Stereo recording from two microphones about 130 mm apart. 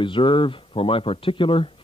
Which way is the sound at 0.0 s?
40° left (ahead or behind).